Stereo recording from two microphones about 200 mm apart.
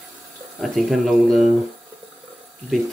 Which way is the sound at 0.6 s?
Centre (ahead or behind).